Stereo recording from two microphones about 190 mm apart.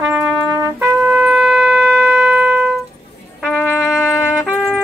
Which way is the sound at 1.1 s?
Centre (ahead or behind).